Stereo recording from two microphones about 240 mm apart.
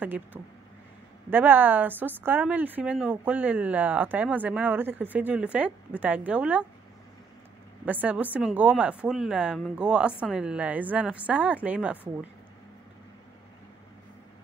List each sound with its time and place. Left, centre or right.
0.0 s a woman's voice: centre
7.8 s speech: centre